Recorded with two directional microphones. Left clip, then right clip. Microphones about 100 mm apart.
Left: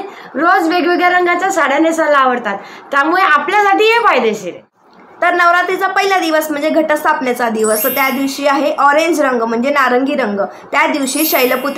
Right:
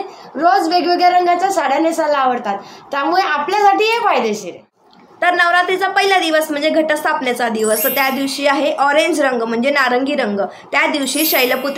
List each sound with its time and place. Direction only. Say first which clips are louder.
0.4 s a woman's voice: left 2 dB; 35° left (ahead or behind)
5.2 s speech: left 2 dB; 10° right (ahead or behind)
7.6 s speech: left 2 dB; centre (ahead or behind)